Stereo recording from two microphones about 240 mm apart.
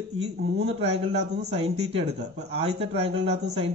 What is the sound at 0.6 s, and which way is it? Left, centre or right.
A man's voice, right.